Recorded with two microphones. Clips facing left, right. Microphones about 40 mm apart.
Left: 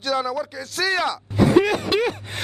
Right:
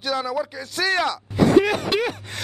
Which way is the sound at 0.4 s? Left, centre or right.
Centre.